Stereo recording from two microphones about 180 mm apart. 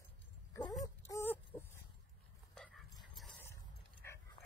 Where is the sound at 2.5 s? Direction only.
Centre (ahead or behind).